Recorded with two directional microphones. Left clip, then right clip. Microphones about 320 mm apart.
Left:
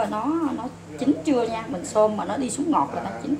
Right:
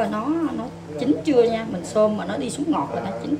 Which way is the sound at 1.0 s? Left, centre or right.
Centre.